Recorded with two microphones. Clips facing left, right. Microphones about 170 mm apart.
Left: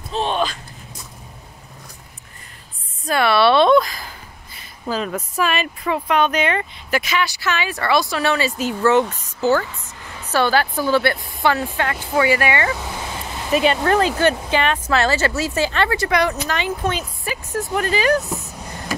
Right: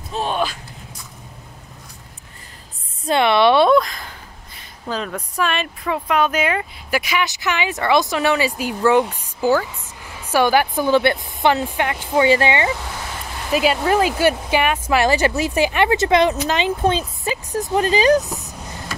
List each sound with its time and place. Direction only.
0.1 s a sound: 10° right (ahead or behind)
3.1 s speech: 20° right (ahead or behind)
3.7 s speech: 5° left (ahead or behind); by 12.7 s 20° right (ahead or behind)
13.5 s speech: 5° right (ahead or behind)